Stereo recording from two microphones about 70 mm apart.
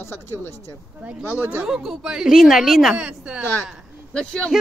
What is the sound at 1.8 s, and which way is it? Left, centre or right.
A woman's voice, centre.